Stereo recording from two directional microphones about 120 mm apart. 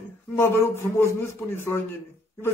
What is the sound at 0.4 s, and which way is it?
Speech, 20° left (ahead or behind).